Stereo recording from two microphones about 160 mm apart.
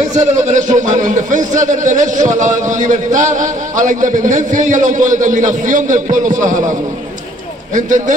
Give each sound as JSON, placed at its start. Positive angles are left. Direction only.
{"t": 0.0, "sound": "a man's voice", "side_deg": -50}